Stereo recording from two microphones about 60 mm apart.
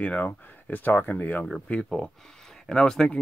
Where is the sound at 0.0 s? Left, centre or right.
Left.